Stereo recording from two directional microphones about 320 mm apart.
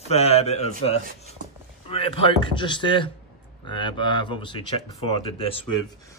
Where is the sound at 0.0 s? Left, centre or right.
Centre.